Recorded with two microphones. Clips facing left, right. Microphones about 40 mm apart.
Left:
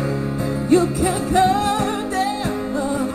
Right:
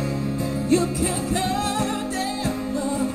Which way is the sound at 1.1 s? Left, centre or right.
Left.